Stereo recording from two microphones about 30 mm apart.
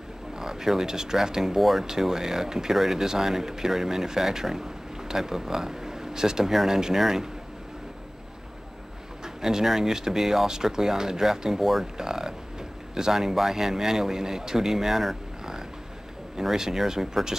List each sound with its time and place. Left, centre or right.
0.4 s speech: centre
1.6 s speech: centre
1.9 s speech: centre
9.2 s speech: centre
12.0 s music: centre
12.9 s speech: centre
16.5 s speech: centre